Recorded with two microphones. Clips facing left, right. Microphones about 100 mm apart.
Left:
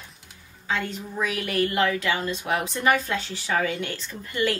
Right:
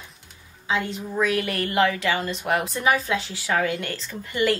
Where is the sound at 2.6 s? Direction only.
Centre (ahead or behind).